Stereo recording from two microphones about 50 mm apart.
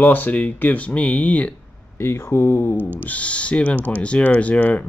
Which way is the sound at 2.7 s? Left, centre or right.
Right.